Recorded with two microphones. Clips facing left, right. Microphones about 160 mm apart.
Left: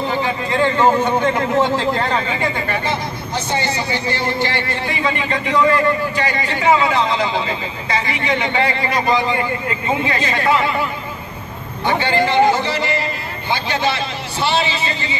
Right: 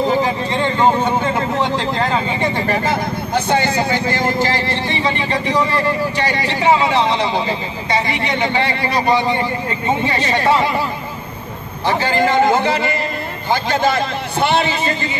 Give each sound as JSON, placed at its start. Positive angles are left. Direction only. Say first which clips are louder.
{"t": 0.5, "sound": "speech", "louder": "left 1 dB", "side_deg": -20}
{"t": 1.0, "sound": "speech", "louder": "left 1 dB", "side_deg": 0}
{"t": 2.4, "sound": "speech", "louder": "right 3 dB", "side_deg": -30}
{"t": 2.8, "sound": "speech", "louder": "right 3 dB", "side_deg": -50}
{"t": 11.8, "sound": "a man's voice", "louder": "right 1 dB", "side_deg": -45}